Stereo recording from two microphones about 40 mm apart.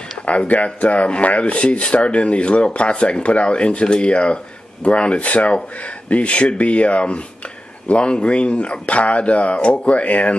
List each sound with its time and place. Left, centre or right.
0.2 s speech: left